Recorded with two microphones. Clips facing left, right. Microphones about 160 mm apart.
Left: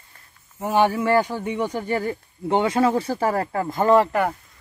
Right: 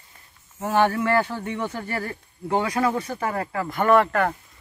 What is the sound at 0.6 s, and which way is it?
Speech, 10° left (ahead or behind).